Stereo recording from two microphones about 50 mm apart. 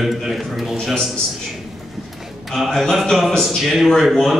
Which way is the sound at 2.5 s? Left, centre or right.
Centre.